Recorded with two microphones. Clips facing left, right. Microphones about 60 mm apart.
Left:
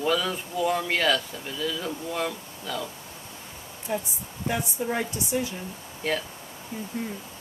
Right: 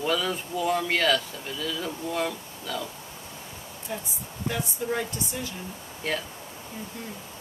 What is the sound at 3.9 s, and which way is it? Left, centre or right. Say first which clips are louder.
Speech: left 5 dB; centre.